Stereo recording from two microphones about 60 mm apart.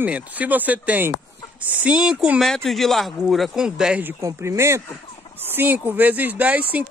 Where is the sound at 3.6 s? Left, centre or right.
Centre.